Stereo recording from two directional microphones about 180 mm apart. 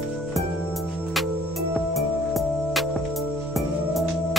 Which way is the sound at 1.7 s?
Centre (ahead or behind).